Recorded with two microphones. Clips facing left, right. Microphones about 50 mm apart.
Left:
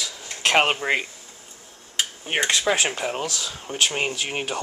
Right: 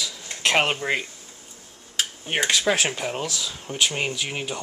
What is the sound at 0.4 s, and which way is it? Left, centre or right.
Speech, centre.